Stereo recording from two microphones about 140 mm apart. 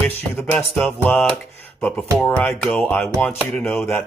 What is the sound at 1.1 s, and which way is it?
Speech, 10° left (ahead or behind).